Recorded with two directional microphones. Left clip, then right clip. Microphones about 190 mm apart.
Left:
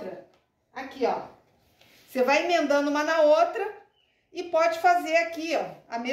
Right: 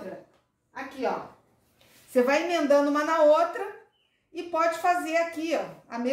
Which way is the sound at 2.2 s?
45° right (ahead or behind).